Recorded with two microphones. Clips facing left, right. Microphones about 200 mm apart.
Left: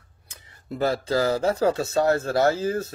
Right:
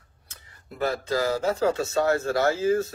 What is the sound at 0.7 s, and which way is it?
Speech, 30° left (ahead or behind).